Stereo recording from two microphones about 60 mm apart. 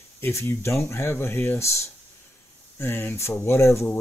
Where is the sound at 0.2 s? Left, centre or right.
Left.